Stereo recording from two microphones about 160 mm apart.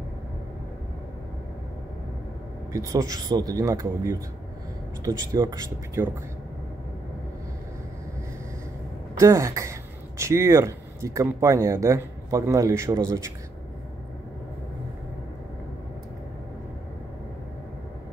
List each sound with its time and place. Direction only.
2.7 s speech: 20° right (ahead or behind)
9.2 s speech: 20° right (ahead or behind)